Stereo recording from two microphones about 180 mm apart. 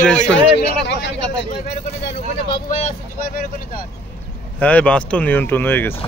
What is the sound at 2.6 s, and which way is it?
Speech, 45° left (ahead or behind).